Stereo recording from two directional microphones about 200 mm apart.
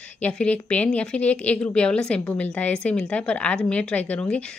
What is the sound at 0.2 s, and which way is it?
A woman's voice, 5° left (ahead or behind).